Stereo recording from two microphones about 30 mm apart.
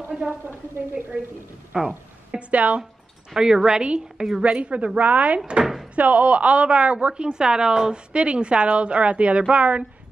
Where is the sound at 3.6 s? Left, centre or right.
Right.